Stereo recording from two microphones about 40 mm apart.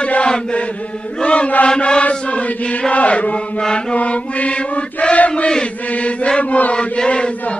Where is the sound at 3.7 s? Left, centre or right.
Left.